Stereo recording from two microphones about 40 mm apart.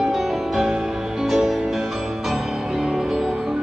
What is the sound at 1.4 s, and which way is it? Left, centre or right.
Music, centre.